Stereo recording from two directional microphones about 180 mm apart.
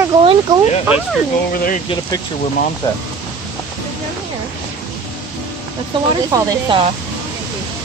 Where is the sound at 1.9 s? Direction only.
20° left (ahead or behind).